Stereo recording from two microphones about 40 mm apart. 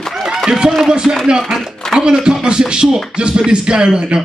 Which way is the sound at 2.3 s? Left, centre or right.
Right.